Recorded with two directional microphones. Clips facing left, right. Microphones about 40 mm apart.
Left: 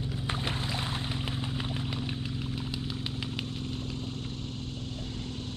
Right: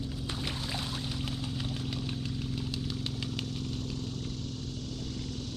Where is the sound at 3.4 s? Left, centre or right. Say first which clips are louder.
Even; left.